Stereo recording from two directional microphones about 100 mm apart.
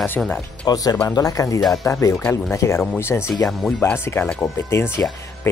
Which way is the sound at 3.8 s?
25° left (ahead or behind).